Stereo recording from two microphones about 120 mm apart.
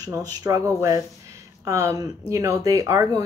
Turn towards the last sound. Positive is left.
turn(degrees=-30)  # may be behind; listen again after turning